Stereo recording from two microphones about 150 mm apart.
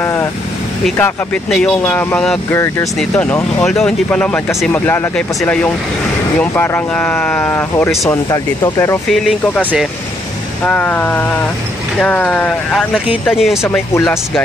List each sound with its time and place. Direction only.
0.0 s vehicle: 15° left (ahead or behind)
0.9 s speech: 15° left (ahead or behind)
9.1 s speech: centre (ahead or behind)
10.6 s speech: 10° left (ahead or behind)
13.6 s speech: 15° left (ahead or behind)